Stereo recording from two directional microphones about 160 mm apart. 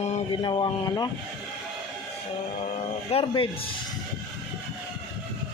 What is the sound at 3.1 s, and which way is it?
Speech, 35° left (ahead or behind).